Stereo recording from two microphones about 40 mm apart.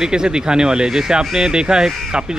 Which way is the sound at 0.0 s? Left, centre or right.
Centre.